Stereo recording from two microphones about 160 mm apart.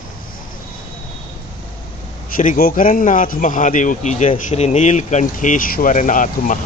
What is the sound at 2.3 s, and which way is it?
A man's voice, 65° left (ahead or behind).